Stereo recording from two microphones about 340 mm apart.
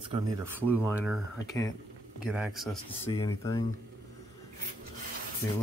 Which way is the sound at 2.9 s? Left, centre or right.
Centre.